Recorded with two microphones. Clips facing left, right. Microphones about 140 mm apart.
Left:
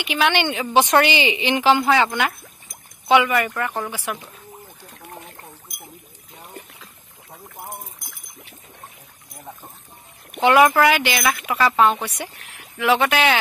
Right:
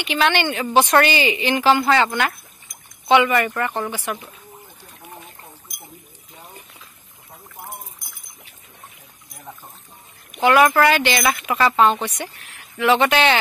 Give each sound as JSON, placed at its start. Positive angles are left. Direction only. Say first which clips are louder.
{"t": 0.0, "sound": "a woman's voice", "louder": "right 1 dB", "side_deg": 10}
{"t": 10.4, "sound": "a woman's voice", "louder": "even", "side_deg": 20}